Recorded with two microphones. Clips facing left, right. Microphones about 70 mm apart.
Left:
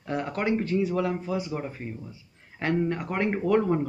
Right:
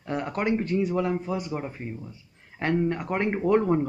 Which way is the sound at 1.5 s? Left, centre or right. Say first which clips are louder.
Right 1 dB; centre.